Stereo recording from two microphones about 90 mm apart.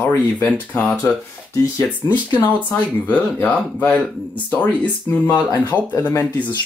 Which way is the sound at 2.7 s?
20° left (ahead or behind).